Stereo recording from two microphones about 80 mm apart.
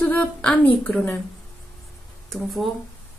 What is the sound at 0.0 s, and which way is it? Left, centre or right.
Speech, left.